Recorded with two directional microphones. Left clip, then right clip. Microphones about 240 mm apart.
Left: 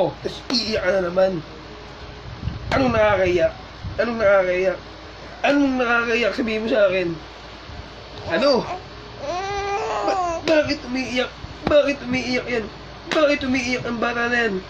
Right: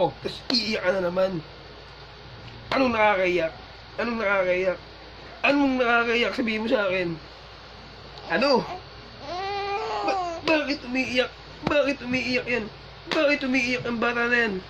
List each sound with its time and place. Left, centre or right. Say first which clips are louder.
0.2 s speech: left 2 dB; right
2.7 s speech: left 3 dB; right
8.3 s speech: left 4 dB; right
9.3 s baby cry: left 4 dB; centre
10.7 s speech: left 2 dB; right